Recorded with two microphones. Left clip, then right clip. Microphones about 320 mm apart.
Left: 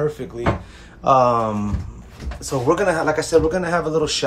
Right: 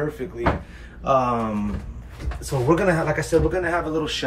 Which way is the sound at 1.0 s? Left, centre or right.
Centre.